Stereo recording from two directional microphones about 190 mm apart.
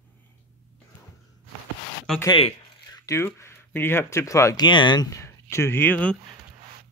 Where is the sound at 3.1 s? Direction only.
15° left (ahead or behind).